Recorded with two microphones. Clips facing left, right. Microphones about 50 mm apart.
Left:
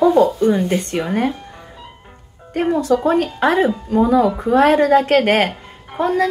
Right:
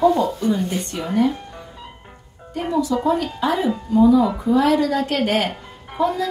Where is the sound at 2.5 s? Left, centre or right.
Left.